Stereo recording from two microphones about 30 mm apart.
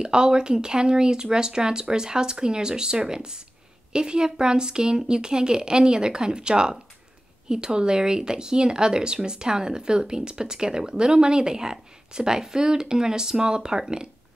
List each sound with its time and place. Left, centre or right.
0.0 s speech: right